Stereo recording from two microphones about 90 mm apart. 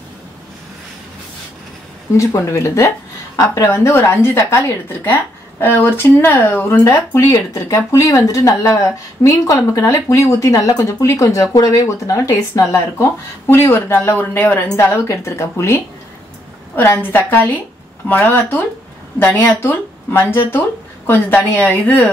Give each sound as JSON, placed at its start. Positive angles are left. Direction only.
{"t": 2.1, "sound": "a woman's voice", "side_deg": 35}